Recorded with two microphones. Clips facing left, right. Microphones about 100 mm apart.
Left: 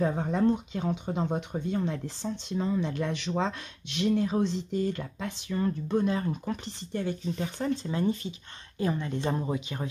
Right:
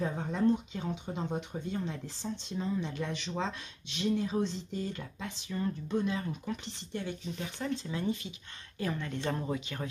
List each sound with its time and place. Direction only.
0.0 s speech: 55° left (ahead or behind); by 8.4 s 35° left (ahead or behind)
8.7 s speech: 25° left (ahead or behind)